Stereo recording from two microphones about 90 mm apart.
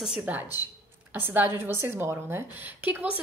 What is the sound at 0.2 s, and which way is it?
A woman's voice, 20° right (ahead or behind).